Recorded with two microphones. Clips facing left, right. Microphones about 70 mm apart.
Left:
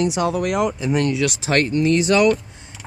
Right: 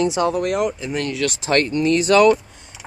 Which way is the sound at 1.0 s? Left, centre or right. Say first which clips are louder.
Left 5 dB; left.